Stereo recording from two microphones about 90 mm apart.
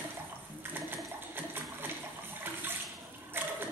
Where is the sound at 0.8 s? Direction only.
25° right (ahead or behind).